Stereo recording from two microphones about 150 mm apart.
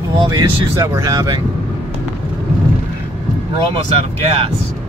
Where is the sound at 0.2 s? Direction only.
25° right (ahead or behind).